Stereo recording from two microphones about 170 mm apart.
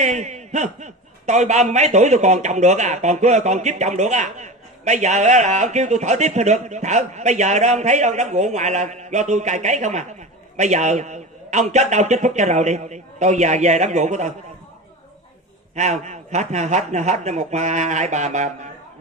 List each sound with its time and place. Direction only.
0.0 s a man's voice: 45° right (ahead or behind)
15.7 s a man's voice: 45° right (ahead or behind)